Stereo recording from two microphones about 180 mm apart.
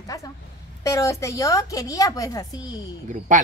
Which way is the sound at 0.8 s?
15° left (ahead or behind).